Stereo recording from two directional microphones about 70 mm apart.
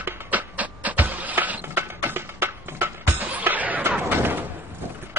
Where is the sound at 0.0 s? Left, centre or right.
Right.